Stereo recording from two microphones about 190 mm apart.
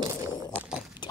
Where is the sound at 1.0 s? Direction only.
25° left (ahead or behind).